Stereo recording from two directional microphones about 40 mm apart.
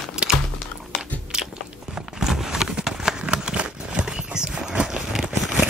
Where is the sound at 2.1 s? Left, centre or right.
Centre.